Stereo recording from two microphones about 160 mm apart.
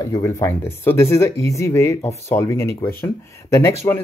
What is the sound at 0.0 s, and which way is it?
Speech, 20° left (ahead or behind).